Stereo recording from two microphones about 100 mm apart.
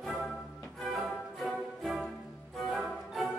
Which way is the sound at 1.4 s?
Centre (ahead or behind).